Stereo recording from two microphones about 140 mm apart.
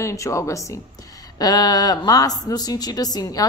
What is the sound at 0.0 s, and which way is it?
Speech, 20° left (ahead or behind).